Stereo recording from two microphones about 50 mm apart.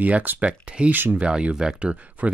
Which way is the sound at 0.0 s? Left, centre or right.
Right.